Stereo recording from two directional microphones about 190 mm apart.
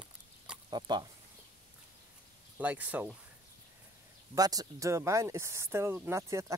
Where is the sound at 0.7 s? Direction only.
25° right (ahead or behind).